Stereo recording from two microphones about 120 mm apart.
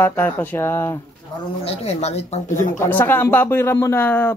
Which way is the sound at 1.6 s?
65° left (ahead or behind).